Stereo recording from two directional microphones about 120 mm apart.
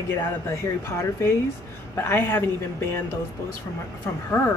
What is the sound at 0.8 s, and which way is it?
A woman's voice, 20° left (ahead or behind).